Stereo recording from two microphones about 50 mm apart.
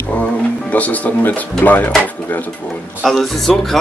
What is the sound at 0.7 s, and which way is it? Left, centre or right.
Speech, left.